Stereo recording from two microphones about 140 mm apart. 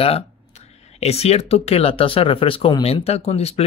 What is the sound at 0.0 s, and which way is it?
Speech, 45° left (ahead or behind).